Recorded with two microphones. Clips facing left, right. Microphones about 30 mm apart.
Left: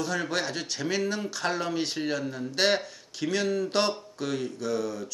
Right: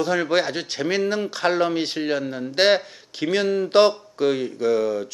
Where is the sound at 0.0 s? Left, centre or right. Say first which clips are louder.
Right 8 dB; right.